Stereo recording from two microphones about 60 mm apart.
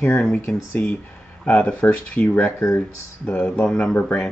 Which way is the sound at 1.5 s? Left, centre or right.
Centre.